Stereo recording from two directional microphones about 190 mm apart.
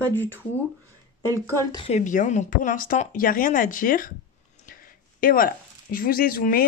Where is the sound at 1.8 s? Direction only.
40° left (ahead or behind).